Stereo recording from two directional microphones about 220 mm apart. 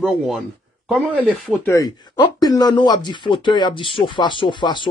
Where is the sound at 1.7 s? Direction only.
15° left (ahead or behind).